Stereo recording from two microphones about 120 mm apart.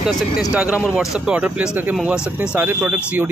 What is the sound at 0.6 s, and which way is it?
Speech, 10° right (ahead or behind).